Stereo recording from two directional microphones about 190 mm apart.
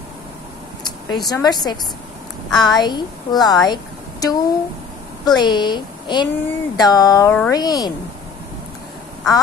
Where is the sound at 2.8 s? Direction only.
20° left (ahead or behind).